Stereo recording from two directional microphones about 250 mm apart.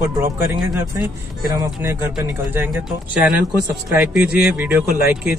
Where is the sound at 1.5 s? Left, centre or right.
Centre.